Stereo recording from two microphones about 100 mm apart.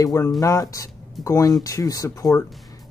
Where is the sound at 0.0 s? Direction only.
30° left (ahead or behind).